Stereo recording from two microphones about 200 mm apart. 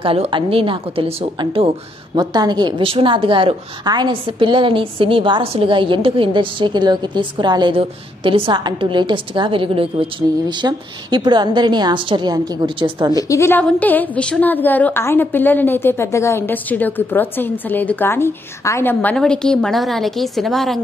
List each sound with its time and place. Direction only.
0.0 s a woman's voice: 25° right (ahead or behind)
13.3 s a woman's voice: 10° left (ahead or behind)